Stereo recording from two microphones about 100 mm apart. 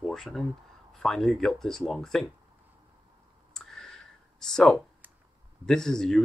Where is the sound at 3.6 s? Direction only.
5° left (ahead or behind).